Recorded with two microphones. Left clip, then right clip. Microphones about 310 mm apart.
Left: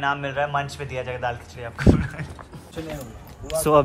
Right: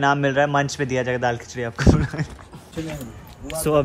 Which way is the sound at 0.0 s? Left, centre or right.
Right.